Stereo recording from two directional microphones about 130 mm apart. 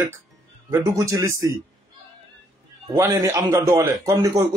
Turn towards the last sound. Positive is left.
turn(degrees=-25)  # may be behind; listen again after turning